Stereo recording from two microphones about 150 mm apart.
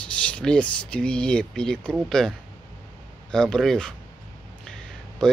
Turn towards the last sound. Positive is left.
turn(degrees=5)  # may be behind; listen again after turning